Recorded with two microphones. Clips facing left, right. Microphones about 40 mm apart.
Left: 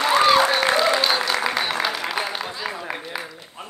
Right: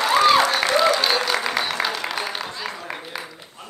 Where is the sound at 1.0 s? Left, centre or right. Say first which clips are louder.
Even; centre.